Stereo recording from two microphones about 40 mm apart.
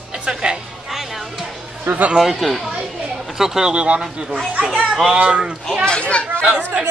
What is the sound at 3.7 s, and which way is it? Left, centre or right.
Speech, right.